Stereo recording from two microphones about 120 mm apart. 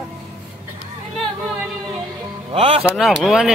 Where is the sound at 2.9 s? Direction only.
Centre (ahead or behind).